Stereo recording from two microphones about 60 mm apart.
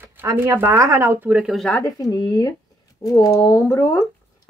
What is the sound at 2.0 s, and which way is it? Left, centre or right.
Speech, left.